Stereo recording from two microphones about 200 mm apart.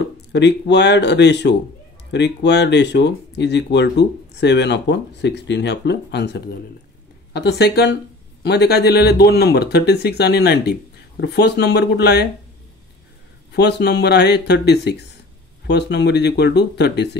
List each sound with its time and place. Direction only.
0.0 s speech: 60° left (ahead or behind)
13.5 s speech: 55° left (ahead or behind)